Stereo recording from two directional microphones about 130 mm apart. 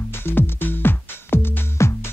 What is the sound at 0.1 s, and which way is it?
Music, 15° left (ahead or behind).